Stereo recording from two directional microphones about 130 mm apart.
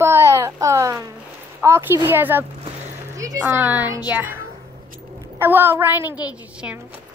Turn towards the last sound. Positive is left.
turn(degrees=-15)  # may be behind; listen again after turning